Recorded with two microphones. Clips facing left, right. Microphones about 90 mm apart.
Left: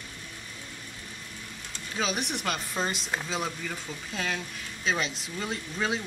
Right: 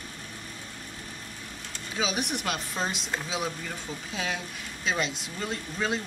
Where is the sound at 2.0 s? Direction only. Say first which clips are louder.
Right 1 dB; centre (ahead or behind).